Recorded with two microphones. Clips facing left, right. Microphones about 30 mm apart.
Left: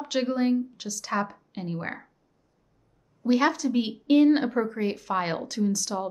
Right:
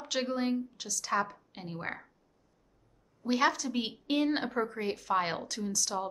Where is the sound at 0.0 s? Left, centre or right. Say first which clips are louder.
Left 6 dB; centre.